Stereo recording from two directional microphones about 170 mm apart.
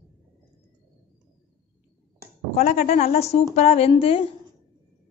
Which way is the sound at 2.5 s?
40° left (ahead or behind).